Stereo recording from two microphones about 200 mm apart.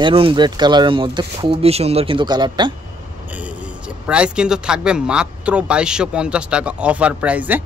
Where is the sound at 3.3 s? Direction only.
5° right (ahead or behind).